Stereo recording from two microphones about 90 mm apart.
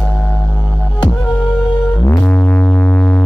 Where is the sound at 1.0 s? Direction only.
60° left (ahead or behind).